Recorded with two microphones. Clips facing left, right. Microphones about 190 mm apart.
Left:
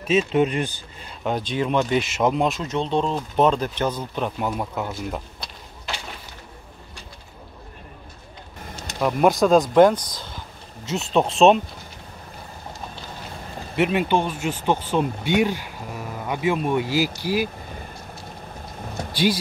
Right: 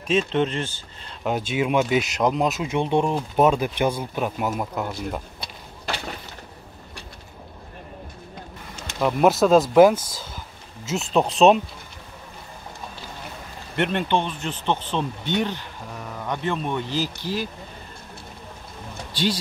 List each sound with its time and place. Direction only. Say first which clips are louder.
0.0 s speech: left 2 dB; 5° left (ahead or behind)
1.5 s speech: right 1 dB; 5° right (ahead or behind)
9.0 s speech: even; 5° right (ahead or behind)
13.7 s speech: left 2 dB; 5° left (ahead or behind)